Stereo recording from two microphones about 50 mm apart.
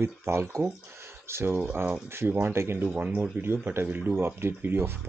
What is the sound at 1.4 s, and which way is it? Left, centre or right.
Speech, right.